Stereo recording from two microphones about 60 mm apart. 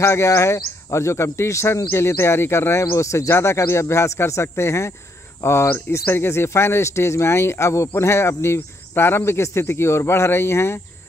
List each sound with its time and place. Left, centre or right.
0.0 s speech: left